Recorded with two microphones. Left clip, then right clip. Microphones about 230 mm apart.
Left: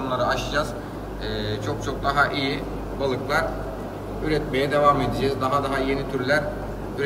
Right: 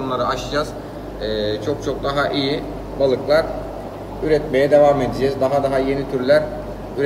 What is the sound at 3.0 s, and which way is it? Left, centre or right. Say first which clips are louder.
Speech: right 8 dB; centre.